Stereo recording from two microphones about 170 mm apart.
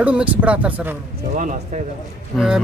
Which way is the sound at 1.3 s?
50° right (ahead or behind).